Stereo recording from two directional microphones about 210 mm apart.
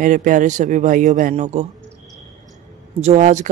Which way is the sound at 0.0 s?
40° right (ahead or behind).